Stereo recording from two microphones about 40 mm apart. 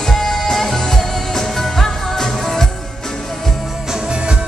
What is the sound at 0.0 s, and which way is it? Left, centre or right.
Music, centre.